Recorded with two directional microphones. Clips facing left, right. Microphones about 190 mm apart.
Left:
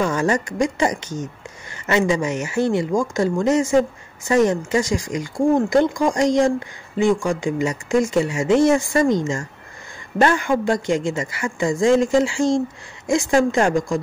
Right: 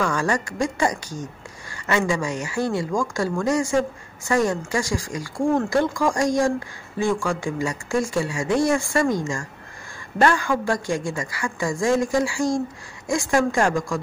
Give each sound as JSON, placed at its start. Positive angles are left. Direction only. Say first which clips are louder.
{"t": 0.0, "sound": "speech", "louder": "left 3 dB", "side_deg": 20}